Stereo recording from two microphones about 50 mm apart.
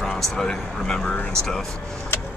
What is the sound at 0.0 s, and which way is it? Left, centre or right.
Speech, centre.